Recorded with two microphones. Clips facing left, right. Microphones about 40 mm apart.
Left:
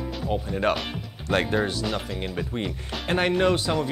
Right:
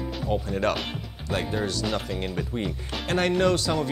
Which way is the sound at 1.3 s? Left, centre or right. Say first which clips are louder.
Left 5 dB; left.